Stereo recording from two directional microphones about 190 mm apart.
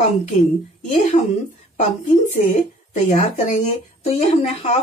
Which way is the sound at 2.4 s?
40° left (ahead or behind).